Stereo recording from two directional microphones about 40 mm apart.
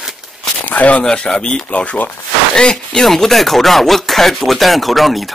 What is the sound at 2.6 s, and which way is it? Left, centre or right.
Speech, centre.